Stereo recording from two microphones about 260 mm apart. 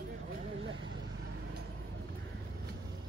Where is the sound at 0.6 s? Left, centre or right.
Right.